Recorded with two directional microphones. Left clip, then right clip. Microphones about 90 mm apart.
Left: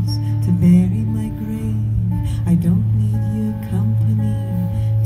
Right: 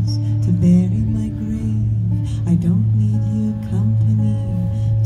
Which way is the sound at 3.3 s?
20° right (ahead or behind).